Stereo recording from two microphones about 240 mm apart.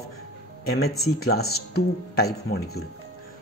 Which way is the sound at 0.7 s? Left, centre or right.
Left.